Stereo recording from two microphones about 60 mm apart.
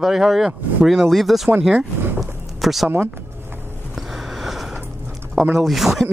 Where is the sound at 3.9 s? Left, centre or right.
Centre.